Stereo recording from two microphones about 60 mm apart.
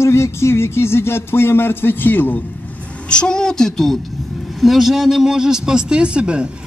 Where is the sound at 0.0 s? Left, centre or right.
Left.